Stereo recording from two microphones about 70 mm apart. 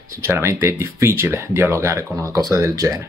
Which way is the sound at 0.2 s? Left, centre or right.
Right.